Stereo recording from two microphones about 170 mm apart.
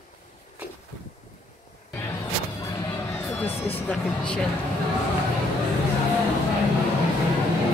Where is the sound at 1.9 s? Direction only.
20° left (ahead or behind).